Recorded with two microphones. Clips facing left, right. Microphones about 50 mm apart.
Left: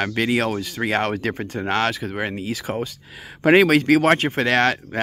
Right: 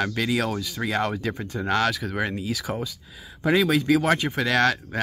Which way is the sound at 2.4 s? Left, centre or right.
Left.